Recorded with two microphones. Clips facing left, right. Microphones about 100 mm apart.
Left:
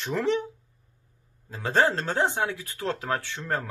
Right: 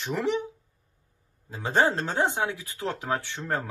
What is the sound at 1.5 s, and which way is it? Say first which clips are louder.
Speech: even; 20° right (ahead or behind).